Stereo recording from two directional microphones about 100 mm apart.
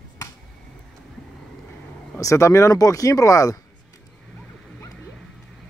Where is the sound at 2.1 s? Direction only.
30° left (ahead or behind).